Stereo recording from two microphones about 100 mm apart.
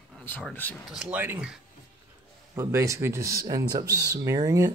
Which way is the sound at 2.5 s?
30° right (ahead or behind).